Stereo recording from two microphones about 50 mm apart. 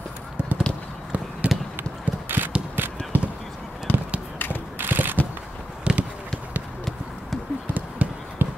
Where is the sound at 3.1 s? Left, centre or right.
Right.